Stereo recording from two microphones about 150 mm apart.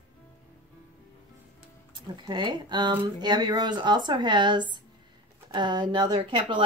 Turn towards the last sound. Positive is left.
turn(degrees=-35)  # may be behind; listen again after turning